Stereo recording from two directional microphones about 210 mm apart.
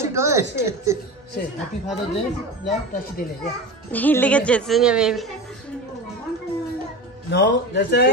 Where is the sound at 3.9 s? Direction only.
10° left (ahead or behind).